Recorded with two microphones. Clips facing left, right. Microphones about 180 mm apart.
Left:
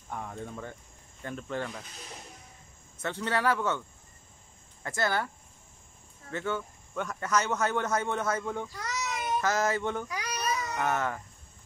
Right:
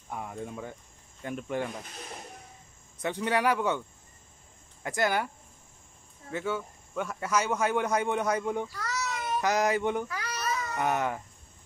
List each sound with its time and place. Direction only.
0.1 s speech: 10° right (ahead or behind)
3.0 s speech: 15° right (ahead or behind)
4.8 s speech: 15° right (ahead or behind)
6.3 s speech: 10° right (ahead or behind)
8.7 s a sound: 20° left (ahead or behind)
9.4 s speech: 15° right (ahead or behind)
10.0 s babbling: 15° left (ahead or behind)
10.8 s speech: 15° right (ahead or behind)